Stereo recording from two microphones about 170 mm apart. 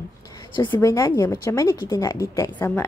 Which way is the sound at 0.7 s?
15° left (ahead or behind).